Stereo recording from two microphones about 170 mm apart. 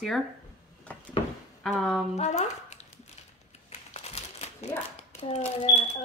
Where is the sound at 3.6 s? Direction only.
40° left (ahead or behind).